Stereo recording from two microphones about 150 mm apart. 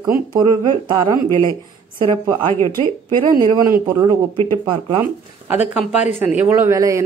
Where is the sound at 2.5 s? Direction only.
15° left (ahead or behind).